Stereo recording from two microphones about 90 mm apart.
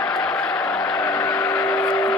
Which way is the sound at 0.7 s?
10° left (ahead or behind).